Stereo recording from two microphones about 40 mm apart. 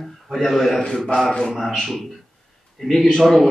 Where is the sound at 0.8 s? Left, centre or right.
Left.